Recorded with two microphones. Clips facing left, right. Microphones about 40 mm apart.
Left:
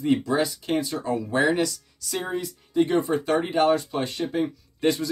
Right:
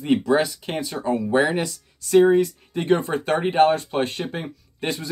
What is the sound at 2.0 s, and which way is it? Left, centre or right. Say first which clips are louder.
Speech: right 14 dB; right.